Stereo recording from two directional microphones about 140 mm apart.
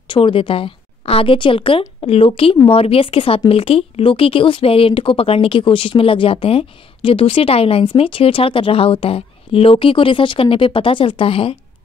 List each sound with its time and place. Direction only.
0.1 s a woman's voice: 40° left (ahead or behind)